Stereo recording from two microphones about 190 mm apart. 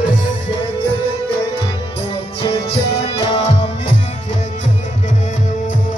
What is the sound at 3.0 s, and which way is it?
Music, 35° left (ahead or behind).